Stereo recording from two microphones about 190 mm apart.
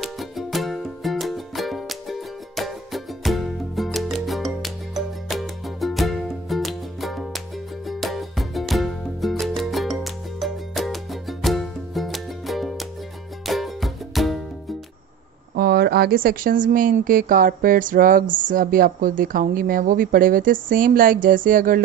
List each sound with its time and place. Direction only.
0.0 s music: centre (ahead or behind)
15.5 s speech: 55° right (ahead or behind)